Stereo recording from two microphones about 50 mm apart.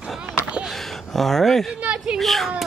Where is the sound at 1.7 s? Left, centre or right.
Centre.